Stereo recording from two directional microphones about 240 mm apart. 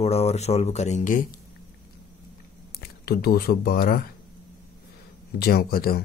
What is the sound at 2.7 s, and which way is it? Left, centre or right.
Speech, left.